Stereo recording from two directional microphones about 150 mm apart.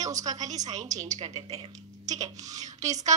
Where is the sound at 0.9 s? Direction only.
50° right (ahead or behind).